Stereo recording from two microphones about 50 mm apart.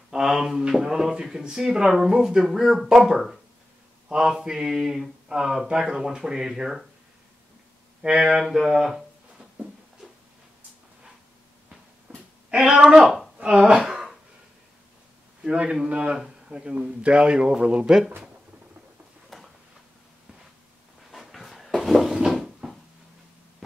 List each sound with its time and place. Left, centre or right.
0.1 s speech: centre
8.0 s speech: centre
12.4 s speech: right
15.4 s speech: centre
19.3 s a sound: centre
21.1 s a sound: centre